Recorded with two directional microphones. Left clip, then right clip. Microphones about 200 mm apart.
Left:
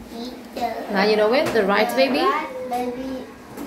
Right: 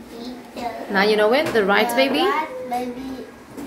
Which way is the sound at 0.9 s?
15° right (ahead or behind).